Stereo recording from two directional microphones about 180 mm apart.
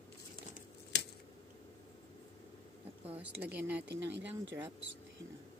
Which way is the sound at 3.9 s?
75° right (ahead or behind).